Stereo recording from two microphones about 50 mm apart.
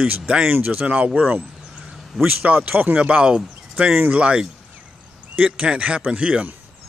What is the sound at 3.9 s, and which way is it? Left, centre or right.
Speech, right.